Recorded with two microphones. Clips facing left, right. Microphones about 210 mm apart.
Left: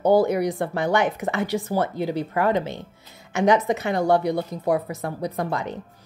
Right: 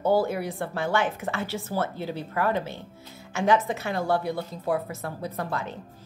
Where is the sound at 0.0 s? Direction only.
15° left (ahead or behind).